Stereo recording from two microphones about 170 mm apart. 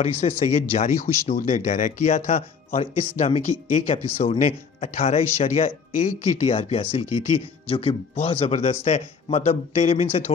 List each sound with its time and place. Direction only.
0.0 s speech: 40° left (ahead or behind)
1.2 s speech: 60° left (ahead or behind)
1.5 s speech: 45° left (ahead or behind)